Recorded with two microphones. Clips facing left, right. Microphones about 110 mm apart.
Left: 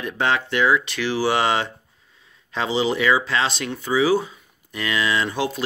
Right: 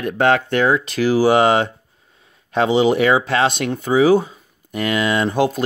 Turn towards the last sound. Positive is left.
turn(degrees=-45)  # may be behind; listen again after turning